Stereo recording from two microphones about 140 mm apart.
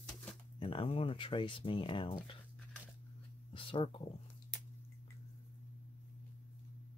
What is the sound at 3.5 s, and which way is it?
Speech, 40° left (ahead or behind).